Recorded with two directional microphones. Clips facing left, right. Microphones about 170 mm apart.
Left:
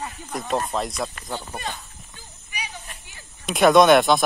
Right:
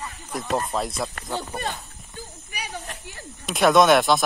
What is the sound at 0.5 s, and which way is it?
Speech, centre (ahead or behind).